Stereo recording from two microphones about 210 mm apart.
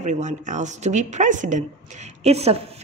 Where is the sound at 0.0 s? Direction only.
35° right (ahead or behind).